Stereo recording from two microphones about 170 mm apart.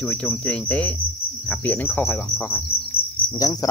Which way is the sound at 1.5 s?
10° left (ahead or behind).